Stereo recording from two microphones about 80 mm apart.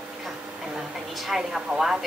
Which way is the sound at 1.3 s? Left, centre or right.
Centre.